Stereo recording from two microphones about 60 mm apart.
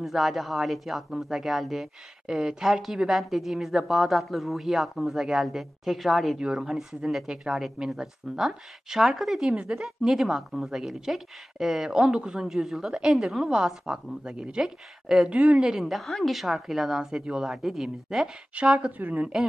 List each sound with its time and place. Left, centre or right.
0.0 s a man's voice: centre
15.8 s a man's voice: centre
18.5 s speech: centre